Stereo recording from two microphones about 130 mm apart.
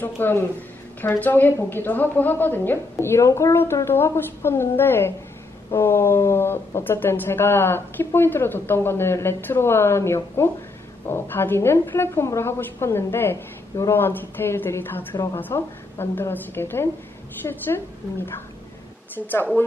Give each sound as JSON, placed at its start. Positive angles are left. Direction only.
{"t": 0.0, "sound": "a woman's voice", "side_deg": 15}